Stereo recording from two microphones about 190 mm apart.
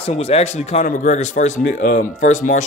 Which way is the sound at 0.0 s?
30° left (ahead or behind).